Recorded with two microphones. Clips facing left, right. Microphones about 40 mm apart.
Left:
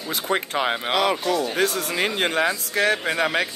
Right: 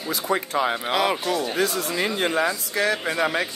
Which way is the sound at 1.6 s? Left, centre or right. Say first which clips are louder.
Left 1 dB; left.